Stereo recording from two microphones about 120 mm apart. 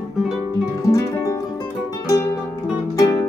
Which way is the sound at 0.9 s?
25° left (ahead or behind).